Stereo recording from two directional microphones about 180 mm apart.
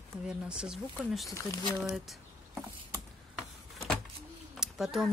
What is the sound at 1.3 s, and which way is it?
Speech, 15° left (ahead or behind).